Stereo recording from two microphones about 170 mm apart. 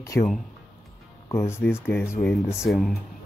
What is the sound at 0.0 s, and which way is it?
Speech, 15° left (ahead or behind).